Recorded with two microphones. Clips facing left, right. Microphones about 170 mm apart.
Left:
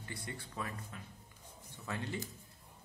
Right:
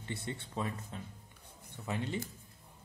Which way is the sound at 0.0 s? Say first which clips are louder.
Right 5 dB; 25° right (ahead or behind).